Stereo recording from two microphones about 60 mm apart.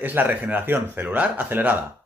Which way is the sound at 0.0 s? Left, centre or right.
Right.